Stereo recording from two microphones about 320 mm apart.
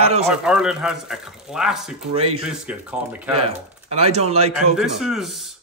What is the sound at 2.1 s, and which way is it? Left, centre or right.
Speech, centre.